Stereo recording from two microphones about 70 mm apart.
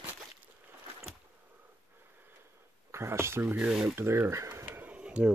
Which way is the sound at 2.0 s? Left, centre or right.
Right.